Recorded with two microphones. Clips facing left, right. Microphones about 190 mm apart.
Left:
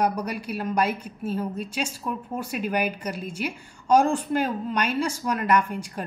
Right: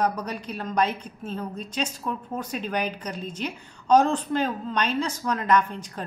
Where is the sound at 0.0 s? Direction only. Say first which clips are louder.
Left 1 dB; 10° left (ahead or behind).